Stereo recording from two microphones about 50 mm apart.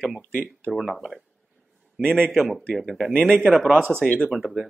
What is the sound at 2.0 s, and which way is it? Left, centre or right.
A man's voice, centre.